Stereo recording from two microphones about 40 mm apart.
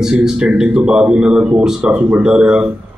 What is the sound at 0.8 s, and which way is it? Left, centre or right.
A man's voice, right.